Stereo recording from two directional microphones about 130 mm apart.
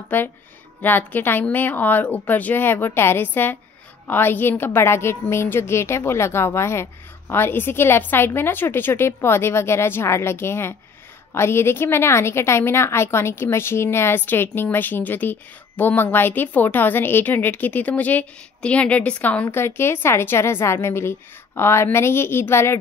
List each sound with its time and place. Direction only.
0.1 s a woman's voice: 15° left (ahead or behind)